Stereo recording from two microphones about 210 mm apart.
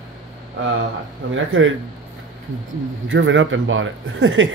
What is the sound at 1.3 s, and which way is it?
Speech, 70° right (ahead or behind).